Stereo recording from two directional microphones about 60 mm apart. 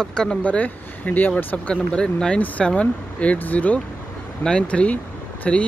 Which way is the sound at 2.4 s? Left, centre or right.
Left.